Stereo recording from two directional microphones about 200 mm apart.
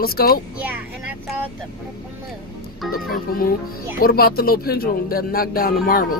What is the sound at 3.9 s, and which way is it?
Speech, 45° left (ahead or behind).